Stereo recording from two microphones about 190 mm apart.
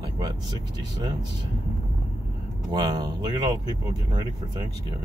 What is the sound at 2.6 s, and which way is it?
Speech, 20° right (ahead or behind).